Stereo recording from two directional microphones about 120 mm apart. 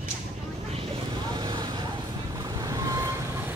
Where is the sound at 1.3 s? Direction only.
40° right (ahead or behind).